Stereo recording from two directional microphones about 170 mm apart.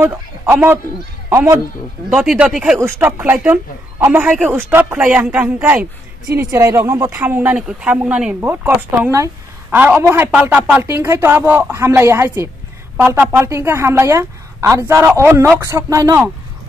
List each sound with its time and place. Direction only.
0.0 s a man's voice: 10° right (ahead or behind)
2.0 s speech: 5° right (ahead or behind)